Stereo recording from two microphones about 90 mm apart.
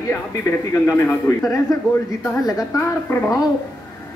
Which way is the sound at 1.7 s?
40° left (ahead or behind).